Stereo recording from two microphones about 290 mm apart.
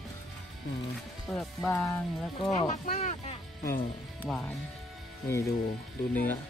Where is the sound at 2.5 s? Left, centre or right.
Left.